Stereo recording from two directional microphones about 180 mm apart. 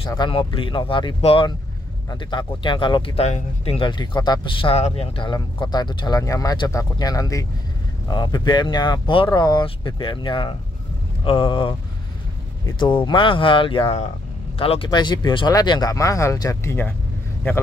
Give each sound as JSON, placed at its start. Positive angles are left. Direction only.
{"t": 0.0, "sound": "speech", "side_deg": 25}